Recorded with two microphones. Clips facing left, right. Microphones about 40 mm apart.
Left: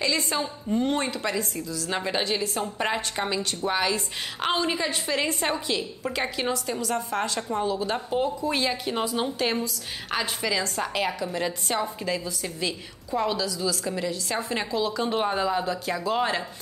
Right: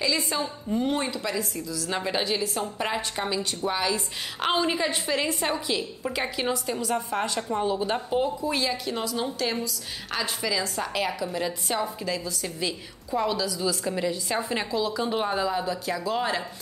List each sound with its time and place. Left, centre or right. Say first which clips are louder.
0.3 s a woman's voice: left 1 dB; centre
3.9 s a woman's voice: left 1 dB; centre
7.6 s speech: right 1 dB; right
7.9 s a woman's voice: even; centre
8.5 s a woman's voice: left 1 dB; centre
13.5 s a woman's voice: right 1 dB; centre